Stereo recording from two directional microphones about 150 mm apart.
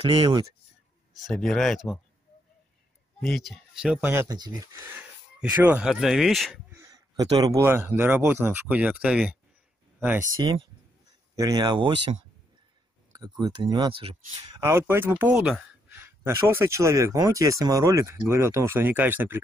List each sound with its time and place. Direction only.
0.0 s speech: 35° right (ahead or behind)
1.1 s speech: centre (ahead or behind)
3.2 s speech: centre (ahead or behind)
4.1 s a man's voice: 15° right (ahead or behind)
5.6 s speech: 10° right (ahead or behind)
6.7 s a man's voice: 20° right (ahead or behind)
10.2 s speech: 25° right (ahead or behind)
13.1 s speech: 30° right (ahead or behind)
14.6 s a man's voice: 15° right (ahead or behind)